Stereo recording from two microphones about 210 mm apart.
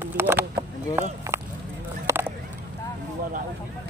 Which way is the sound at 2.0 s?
10° right (ahead or behind).